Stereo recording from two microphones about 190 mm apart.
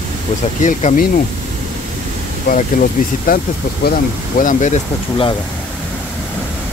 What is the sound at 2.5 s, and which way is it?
Speech, 55° left (ahead or behind).